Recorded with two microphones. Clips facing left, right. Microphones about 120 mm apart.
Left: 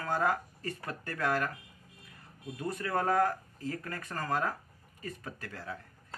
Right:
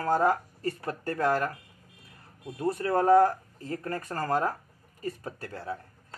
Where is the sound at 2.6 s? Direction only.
30° right (ahead or behind).